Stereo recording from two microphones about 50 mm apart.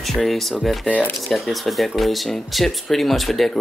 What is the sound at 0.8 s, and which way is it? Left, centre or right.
Speech, left.